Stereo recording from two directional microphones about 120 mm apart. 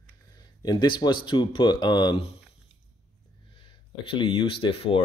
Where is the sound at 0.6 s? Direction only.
40° left (ahead or behind).